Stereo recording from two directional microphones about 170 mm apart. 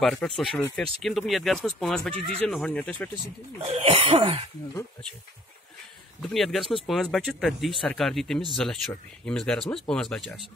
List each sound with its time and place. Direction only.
0.0 s speech: centre (ahead or behind)
3.6 s cough: 35° right (ahead or behind)
6.2 s speech: centre (ahead or behind)